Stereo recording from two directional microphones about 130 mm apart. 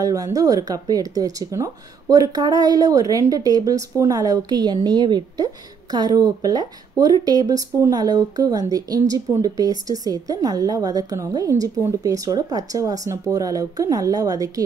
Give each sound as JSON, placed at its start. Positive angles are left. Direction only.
{"t": 0.0, "sound": "speech", "side_deg": -25}